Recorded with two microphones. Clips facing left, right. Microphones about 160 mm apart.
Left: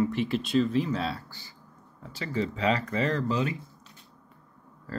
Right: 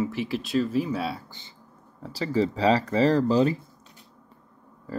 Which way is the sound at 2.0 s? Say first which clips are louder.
Right 6 dB; 35° right (ahead or behind).